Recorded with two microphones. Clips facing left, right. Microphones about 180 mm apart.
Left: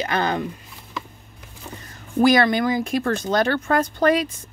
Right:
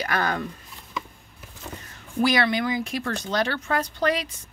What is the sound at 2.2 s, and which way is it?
Speech, 45° left (ahead or behind).